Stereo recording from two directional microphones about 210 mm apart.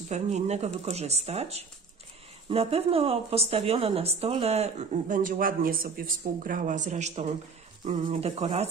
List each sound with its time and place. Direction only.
0.1 s a woman's voice: 30° right (ahead or behind)